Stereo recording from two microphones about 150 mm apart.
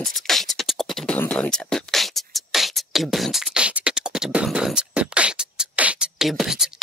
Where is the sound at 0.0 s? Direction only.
Centre (ahead or behind).